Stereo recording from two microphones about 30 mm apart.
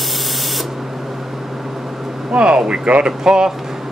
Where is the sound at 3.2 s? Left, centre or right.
Right.